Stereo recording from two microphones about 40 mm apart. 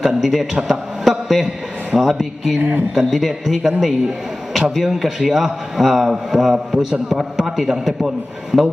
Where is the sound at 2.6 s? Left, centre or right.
Right.